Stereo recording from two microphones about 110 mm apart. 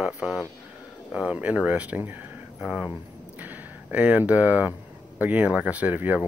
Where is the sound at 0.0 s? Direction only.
10° right (ahead or behind).